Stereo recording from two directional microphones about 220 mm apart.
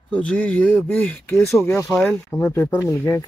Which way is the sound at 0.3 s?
5° left (ahead or behind).